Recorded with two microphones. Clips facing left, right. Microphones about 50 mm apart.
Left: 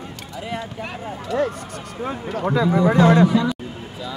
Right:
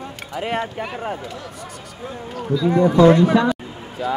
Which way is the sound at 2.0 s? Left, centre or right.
Left.